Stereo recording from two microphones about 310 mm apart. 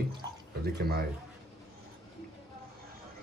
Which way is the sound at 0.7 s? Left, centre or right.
Right.